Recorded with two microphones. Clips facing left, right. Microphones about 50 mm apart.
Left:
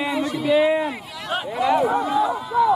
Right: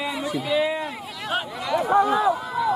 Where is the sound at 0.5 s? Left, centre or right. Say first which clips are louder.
Left 6 dB; centre.